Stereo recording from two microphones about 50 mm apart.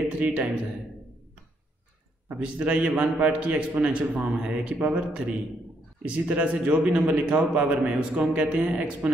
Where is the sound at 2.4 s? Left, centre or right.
Right.